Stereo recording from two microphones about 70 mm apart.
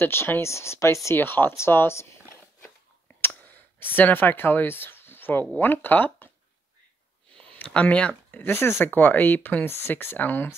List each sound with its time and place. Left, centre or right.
0.0 s speech: left
1.1 s speech: left
3.2 s a sound: left
5.6 s speech: left
7.5 s speech: left